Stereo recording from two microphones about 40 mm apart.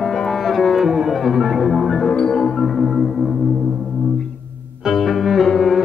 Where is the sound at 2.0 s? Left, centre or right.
Centre.